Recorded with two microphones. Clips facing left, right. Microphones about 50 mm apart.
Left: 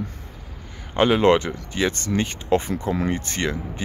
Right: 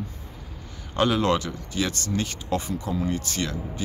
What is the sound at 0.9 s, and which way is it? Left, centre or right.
Speech, left.